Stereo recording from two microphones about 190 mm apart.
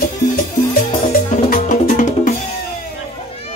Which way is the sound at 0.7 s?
50° left (ahead or behind).